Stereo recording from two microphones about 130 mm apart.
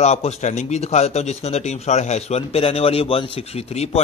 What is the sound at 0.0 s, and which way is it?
Speech, 60° left (ahead or behind).